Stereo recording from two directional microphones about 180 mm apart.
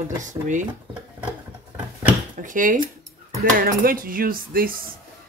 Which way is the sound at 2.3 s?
45° right (ahead or behind).